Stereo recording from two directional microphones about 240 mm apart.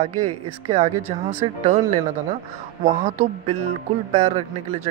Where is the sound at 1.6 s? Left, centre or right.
Right.